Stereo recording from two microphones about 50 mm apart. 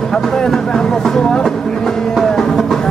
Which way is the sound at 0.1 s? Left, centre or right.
Centre.